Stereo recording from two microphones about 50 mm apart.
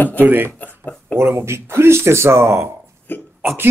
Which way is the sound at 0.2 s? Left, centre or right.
Right.